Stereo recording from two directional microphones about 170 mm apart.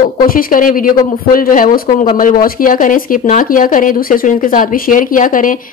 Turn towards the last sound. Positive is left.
turn(degrees=50)  # may be behind; listen again after turning